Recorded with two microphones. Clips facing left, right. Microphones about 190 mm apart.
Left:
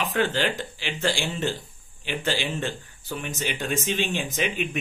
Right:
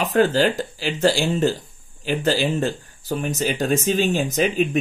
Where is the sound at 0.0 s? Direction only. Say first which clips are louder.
Right 7 dB; 40° right (ahead or behind).